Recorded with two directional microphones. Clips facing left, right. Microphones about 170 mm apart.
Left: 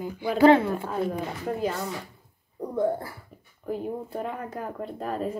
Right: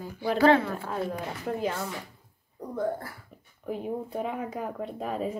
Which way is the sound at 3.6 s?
Centre (ahead or behind).